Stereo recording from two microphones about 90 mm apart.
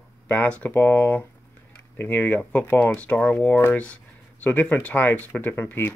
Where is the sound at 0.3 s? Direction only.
15° left (ahead or behind).